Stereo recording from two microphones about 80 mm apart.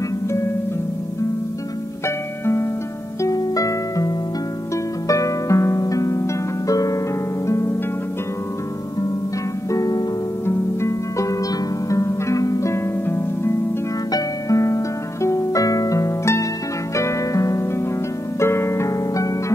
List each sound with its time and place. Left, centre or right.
2.0 s music: left
3.2 s harp: left
7.4 s music: left
9.7 s harp: left
10.4 s harp: left
15.2 s music: left
18.4 s harp: left